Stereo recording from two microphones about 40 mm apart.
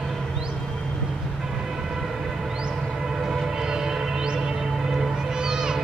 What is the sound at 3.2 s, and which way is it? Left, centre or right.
Music, centre.